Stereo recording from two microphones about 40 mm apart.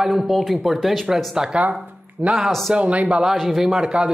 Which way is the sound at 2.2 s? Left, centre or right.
Right.